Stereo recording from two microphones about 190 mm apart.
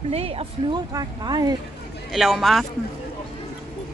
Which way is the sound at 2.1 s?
Centre (ahead or behind).